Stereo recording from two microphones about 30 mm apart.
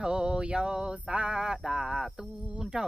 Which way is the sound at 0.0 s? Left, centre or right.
Right.